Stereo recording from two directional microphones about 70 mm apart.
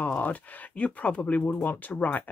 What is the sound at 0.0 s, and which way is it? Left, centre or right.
Speech, left.